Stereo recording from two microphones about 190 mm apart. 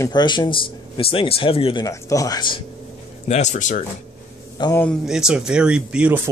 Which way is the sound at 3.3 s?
40° left (ahead or behind).